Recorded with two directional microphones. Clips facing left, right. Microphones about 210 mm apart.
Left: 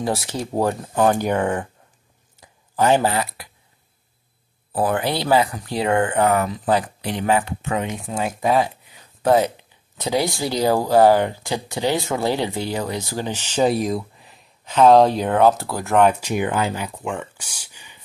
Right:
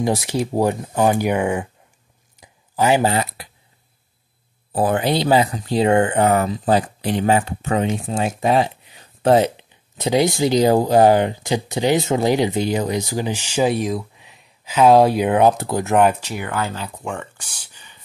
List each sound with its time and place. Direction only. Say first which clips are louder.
0.0 s speech: right 4 dB; 15° right (ahead or behind)
2.4 s a sound: even; 10° right (ahead or behind)
3.1 s speech: right 2 dB; 25° right (ahead or behind)
4.7 s speech: right 3 dB; 25° right (ahead or behind)
16.2 s speech: left 4 dB; 15° left (ahead or behind)